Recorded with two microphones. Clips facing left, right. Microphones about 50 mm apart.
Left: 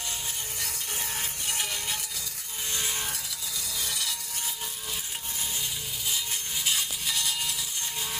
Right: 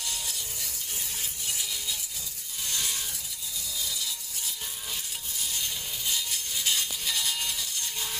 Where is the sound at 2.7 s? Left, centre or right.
Left.